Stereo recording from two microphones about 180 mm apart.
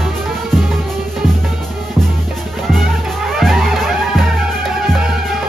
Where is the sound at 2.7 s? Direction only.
Centre (ahead or behind).